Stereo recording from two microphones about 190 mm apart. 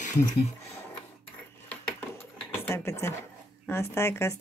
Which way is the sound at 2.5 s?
15° left (ahead or behind).